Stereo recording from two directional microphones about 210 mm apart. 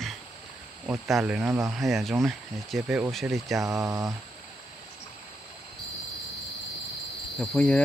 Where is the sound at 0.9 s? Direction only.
Centre (ahead or behind).